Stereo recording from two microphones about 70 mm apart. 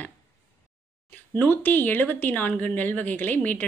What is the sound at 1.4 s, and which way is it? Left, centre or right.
A woman's voice, left.